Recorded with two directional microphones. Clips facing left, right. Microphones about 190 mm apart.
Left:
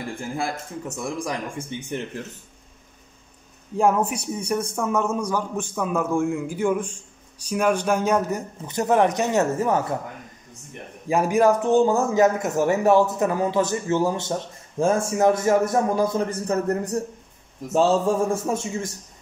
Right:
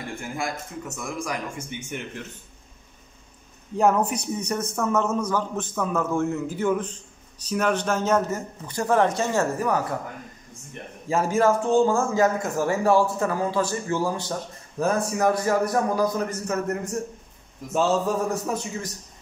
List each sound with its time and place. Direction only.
0.9 s speech: 30° left (ahead or behind)
3.7 s speech: 10° left (ahead or behind)
11.1 s a man's voice: 15° left (ahead or behind)